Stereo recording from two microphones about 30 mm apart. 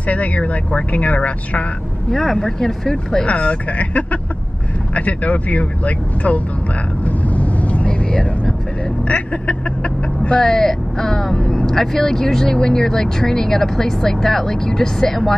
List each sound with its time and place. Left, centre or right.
0.0 s speech: left
2.0 s speech: centre
3.3 s speech: left
7.1 s vehicle: left
10.4 s speech: centre